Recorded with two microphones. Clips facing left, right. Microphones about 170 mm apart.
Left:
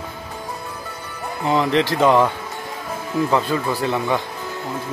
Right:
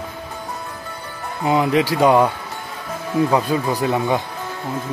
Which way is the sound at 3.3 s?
15° right (ahead or behind).